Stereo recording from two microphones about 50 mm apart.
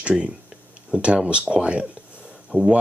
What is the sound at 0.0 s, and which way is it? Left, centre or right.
Speech, right.